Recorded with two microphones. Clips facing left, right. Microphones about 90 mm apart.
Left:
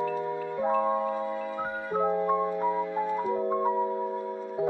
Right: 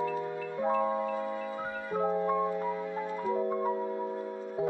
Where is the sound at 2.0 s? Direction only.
25° left (ahead or behind).